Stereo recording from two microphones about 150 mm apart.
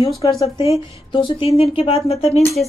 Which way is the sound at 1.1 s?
35° left (ahead or behind).